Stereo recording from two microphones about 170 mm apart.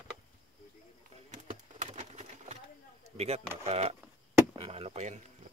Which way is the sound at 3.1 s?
40° right (ahead or behind).